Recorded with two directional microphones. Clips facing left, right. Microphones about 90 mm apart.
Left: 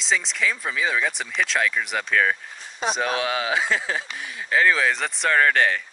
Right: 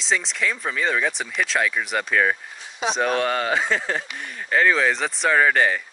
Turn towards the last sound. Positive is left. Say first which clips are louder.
# right 1 dB
turn(degrees=-5)  # may be behind; listen again after turning